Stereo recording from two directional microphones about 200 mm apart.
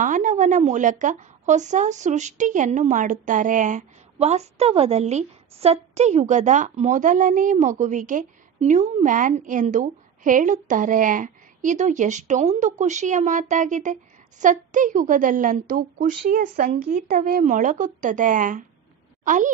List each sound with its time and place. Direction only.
0.0 s a woman's voice: 40° right (ahead or behind)